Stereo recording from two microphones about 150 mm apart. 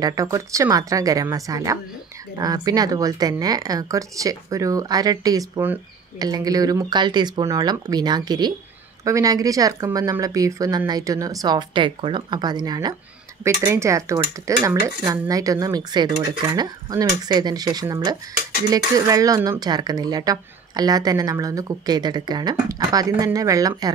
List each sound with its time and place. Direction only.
0.0 s speech: 20° right (ahead or behind)